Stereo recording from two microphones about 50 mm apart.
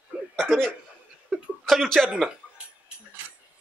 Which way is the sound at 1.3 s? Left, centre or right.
Centre.